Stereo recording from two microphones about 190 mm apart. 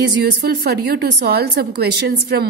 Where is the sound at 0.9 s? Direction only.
55° right (ahead or behind).